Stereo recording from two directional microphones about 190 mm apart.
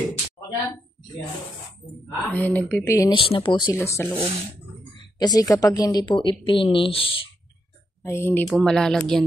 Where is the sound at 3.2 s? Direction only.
25° left (ahead or behind).